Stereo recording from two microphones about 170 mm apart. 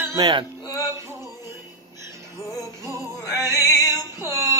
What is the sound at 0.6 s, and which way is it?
Music, 15° right (ahead or behind).